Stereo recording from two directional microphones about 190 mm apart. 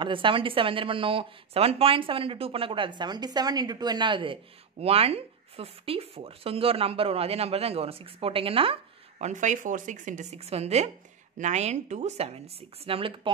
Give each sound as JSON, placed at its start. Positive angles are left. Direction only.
{"t": 0.0, "sound": "speech", "side_deg": -25}
{"t": 9.2, "sound": "a woman's voice", "side_deg": -40}